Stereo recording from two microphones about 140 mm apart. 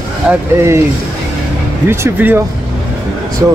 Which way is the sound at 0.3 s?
20° right (ahead or behind).